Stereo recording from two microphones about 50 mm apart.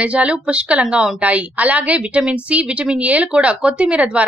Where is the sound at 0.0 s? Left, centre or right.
Right.